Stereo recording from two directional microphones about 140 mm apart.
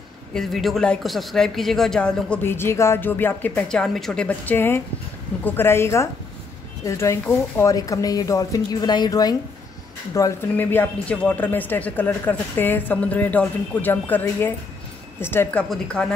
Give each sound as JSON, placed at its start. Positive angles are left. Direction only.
{"t": 0.3, "sound": "speech", "side_deg": 0}